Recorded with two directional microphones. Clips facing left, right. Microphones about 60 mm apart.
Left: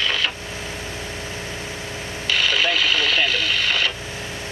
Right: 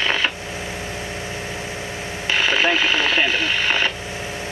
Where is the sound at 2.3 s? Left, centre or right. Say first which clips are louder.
Right 2 dB; right.